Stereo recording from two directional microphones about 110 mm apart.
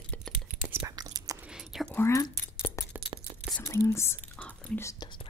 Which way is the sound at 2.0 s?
25° left (ahead or behind).